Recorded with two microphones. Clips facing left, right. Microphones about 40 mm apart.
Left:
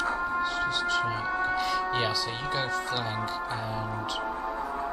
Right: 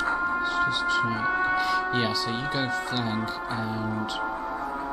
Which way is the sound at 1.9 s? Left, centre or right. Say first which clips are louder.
Right 2 dB; centre.